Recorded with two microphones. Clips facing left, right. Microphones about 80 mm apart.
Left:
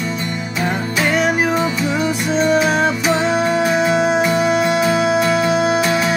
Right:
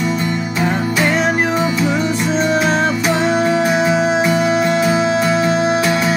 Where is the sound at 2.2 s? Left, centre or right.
Centre.